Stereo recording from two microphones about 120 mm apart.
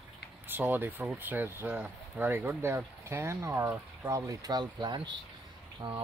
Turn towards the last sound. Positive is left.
turn(degrees=-45)  # may be behind; listen again after turning